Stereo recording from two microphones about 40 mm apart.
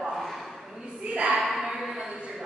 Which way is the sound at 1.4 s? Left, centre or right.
Centre.